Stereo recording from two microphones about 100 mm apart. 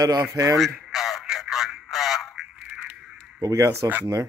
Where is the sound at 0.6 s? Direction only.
Centre (ahead or behind).